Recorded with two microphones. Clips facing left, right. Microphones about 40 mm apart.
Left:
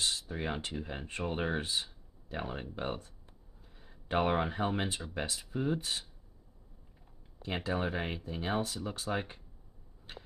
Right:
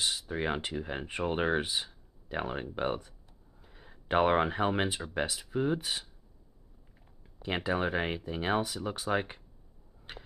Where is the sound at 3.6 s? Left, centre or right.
Right.